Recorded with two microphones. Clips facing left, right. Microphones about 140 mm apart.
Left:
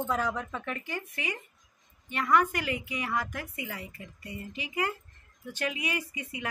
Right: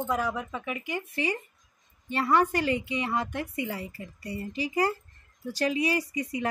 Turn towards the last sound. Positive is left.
turn(degrees=-35)  # may be behind; listen again after turning